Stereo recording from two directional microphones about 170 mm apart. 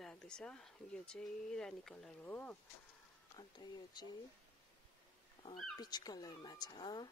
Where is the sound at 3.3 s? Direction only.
25° left (ahead or behind).